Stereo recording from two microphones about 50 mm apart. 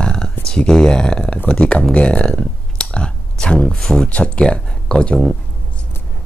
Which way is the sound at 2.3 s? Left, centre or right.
Centre.